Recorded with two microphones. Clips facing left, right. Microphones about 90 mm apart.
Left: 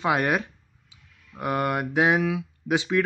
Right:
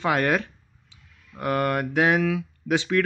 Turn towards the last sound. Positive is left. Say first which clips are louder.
# right 1 dB
turn(degrees=15)  # may be behind; listen again after turning